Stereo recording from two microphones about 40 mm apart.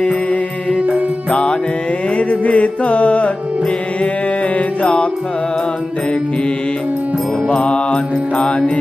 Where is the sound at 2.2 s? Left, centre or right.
Left.